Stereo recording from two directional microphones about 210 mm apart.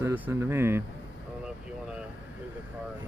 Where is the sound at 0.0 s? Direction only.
10° right (ahead or behind).